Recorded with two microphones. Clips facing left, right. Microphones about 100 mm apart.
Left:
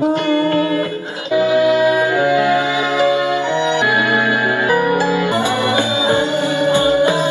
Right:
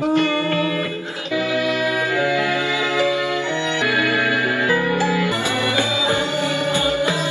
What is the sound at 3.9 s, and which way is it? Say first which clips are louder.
Music: left 4 dB; 20° left (ahead or behind).